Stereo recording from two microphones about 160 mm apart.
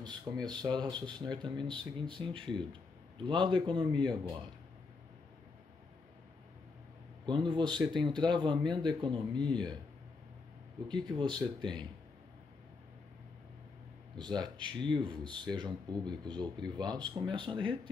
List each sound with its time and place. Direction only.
0.0 s a man's voice: 25° right (ahead or behind)
7.2 s speech: 30° right (ahead or behind)
11.1 s speech: 30° right (ahead or behind)
14.1 s speech: 30° right (ahead or behind)